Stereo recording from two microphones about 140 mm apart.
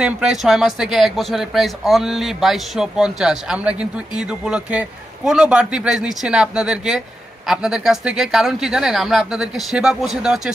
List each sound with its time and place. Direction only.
0.0 s speech: 5° right (ahead or behind)